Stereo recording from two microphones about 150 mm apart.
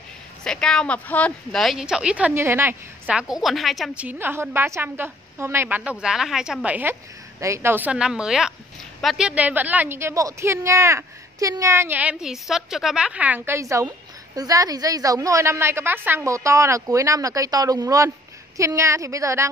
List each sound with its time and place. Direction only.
0.4 s a woman's voice: 5° left (ahead or behind); by 19.5 s 20° right (ahead or behind)